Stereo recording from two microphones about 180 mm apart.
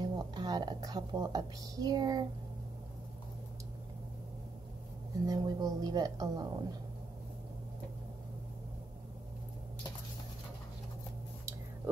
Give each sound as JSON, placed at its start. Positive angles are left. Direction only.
{"t": 0.0, "sound": "speech", "side_deg": -25}
{"t": 5.2, "sound": "speech", "side_deg": -20}